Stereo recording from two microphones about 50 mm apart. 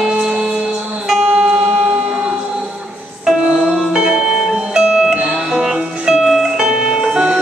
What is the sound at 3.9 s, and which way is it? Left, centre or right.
Music, centre.